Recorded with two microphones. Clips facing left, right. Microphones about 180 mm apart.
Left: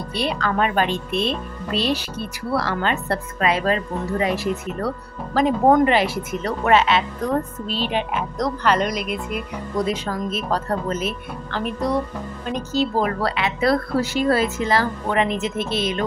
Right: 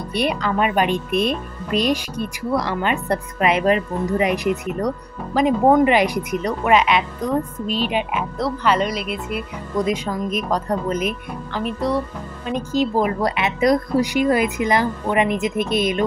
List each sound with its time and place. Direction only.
0.1 s speech: 20° right (ahead or behind)